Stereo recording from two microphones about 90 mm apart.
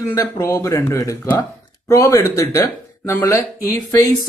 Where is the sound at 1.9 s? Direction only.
30° left (ahead or behind).